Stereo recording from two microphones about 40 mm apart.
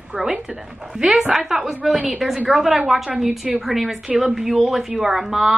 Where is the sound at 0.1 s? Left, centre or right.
Centre.